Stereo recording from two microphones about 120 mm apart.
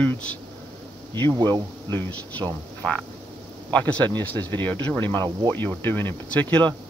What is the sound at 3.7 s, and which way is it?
Speech, 15° left (ahead or behind).